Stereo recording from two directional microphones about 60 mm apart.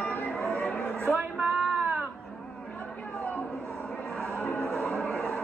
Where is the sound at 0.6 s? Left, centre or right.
Left.